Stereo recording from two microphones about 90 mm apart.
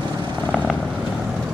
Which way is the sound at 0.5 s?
10° left (ahead or behind).